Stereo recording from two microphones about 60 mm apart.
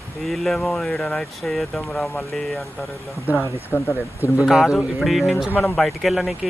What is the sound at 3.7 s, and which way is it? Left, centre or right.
Speech, left.